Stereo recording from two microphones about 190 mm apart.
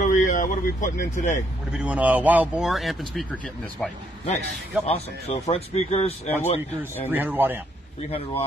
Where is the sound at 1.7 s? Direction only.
5° right (ahead or behind).